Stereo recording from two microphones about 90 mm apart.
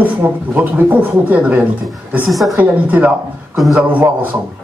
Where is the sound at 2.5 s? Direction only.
15° right (ahead or behind).